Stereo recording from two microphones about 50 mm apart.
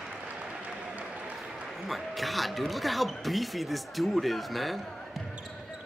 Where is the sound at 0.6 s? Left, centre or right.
Right.